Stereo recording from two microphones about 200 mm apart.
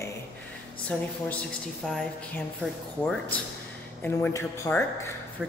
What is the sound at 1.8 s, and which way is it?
Speech, centre (ahead or behind).